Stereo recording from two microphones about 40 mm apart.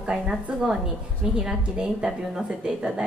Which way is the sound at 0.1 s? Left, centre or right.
Centre.